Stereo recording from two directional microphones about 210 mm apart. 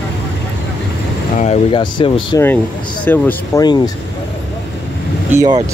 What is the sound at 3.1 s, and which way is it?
Speech, 10° left (ahead or behind).